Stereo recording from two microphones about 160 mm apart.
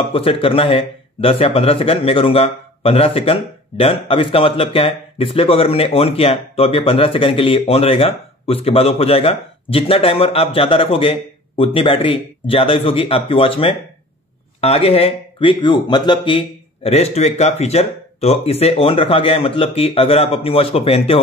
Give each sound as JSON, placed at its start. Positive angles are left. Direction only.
{"t": 0.1, "sound": "speech", "side_deg": 35}